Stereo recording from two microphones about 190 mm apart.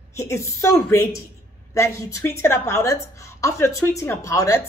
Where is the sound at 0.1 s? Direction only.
15° left (ahead or behind).